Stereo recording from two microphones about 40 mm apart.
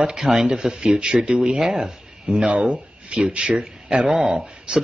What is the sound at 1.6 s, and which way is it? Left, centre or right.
Speech, centre.